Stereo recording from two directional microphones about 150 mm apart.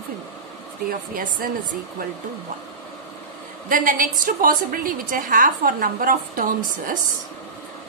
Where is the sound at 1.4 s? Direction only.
70° right (ahead or behind).